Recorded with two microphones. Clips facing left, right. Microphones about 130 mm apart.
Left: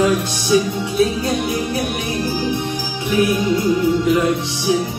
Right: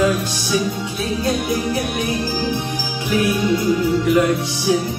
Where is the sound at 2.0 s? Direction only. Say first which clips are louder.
Even; 20° left (ahead or behind).